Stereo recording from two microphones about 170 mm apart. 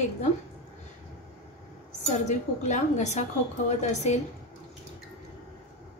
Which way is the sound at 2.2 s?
45° left (ahead or behind).